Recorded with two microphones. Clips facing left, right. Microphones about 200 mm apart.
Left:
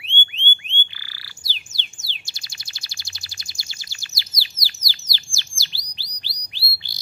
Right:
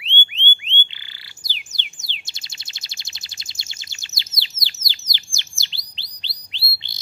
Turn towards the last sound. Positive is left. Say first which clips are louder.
# even
turn(degrees=-20)  # may be behind; listen again after turning